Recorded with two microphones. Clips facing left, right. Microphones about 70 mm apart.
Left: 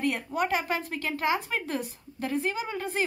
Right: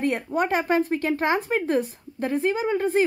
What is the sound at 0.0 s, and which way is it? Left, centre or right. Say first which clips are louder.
Speech: right 4 dB; right.